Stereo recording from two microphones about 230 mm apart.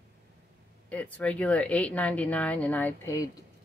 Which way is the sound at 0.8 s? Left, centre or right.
Centre.